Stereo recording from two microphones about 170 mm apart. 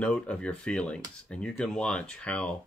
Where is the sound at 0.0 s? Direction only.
5° left (ahead or behind).